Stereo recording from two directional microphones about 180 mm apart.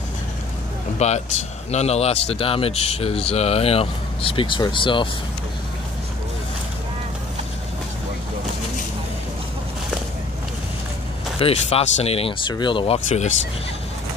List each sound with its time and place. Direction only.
0.9 s speech: 40° left (ahead or behind)
11.3 s speech: 35° left (ahead or behind)